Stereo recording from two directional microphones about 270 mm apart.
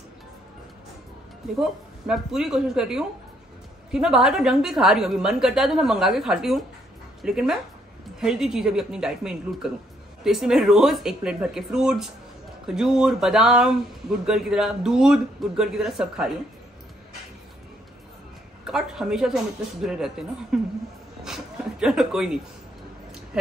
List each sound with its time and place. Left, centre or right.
1.6 s speech: centre
18.7 s speech: centre
21.2 s a sound: centre